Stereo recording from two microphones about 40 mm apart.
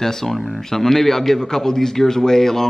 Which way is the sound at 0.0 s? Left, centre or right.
Centre.